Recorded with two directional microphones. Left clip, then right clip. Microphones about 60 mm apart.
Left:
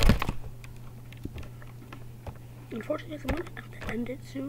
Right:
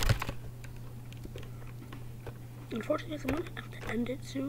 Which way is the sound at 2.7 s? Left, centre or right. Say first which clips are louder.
Even; centre.